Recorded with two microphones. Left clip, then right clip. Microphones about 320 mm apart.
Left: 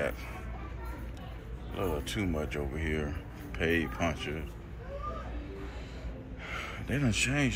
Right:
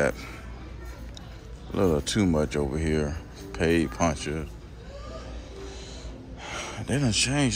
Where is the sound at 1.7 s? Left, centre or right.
Right.